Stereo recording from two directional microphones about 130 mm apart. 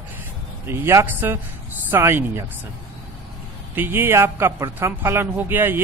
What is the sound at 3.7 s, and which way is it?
Speech, 15° right (ahead or behind).